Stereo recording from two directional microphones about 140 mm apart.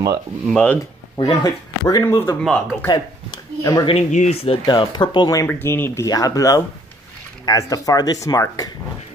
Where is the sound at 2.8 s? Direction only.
30° left (ahead or behind).